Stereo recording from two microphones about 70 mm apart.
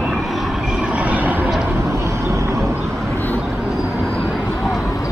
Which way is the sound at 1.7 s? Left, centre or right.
Right.